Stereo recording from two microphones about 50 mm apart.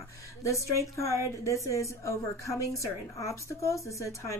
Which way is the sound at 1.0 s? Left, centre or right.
Left.